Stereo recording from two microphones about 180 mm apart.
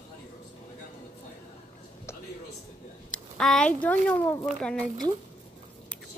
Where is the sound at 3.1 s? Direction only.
5° left (ahead or behind).